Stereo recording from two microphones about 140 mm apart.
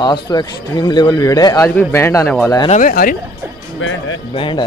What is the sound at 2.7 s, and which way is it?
Speech, 75° left (ahead or behind).